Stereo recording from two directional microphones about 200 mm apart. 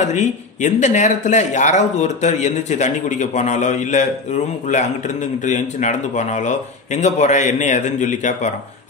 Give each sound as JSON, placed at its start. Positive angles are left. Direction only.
{"t": 0.0, "sound": "speech", "side_deg": 35}